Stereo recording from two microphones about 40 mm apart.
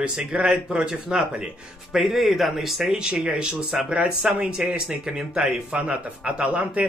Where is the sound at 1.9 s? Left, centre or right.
Centre.